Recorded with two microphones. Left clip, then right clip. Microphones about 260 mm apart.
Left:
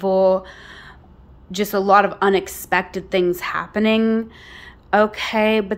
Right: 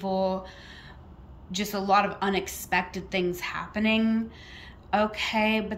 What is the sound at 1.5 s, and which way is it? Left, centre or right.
Speech, centre.